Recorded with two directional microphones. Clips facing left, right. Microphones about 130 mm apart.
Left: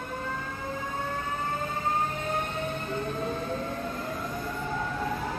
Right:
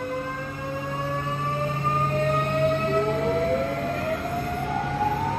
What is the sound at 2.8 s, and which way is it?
Music, 90° right.